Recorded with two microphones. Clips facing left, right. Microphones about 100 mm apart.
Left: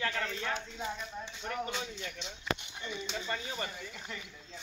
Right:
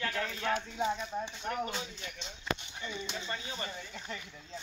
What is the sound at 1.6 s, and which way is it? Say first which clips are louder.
Speech: even; 35° right (ahead or behind).